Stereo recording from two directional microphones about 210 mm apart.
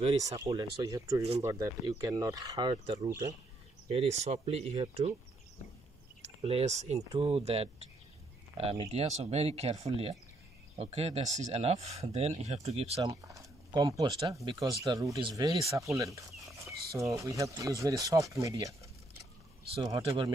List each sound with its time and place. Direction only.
0.2 s speech: 15° right (ahead or behind)
3.9 s speech: 30° right (ahead or behind)
6.2 s speech: 30° right (ahead or behind)
13.1 s speech: 15° right (ahead or behind)